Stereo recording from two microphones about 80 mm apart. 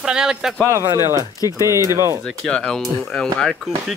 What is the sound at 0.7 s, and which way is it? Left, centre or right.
Speech, right.